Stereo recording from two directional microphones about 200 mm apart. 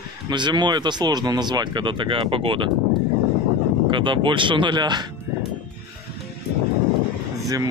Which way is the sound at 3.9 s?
25° right (ahead or behind).